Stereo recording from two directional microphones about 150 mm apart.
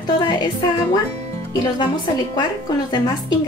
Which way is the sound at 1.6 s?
25° left (ahead or behind).